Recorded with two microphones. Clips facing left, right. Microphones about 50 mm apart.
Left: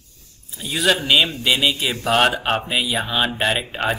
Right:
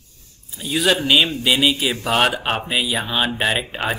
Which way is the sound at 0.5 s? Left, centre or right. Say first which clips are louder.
Right 1 dB; centre.